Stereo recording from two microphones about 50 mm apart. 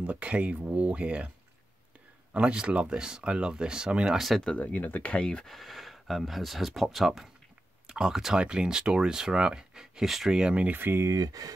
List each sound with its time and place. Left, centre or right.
0.0 s speech: right
2.3 s speech: centre
4.6 s speech: left
5.2 s speech: centre
5.5 s speech: centre
10.4 s speech: right
10.7 s speech: right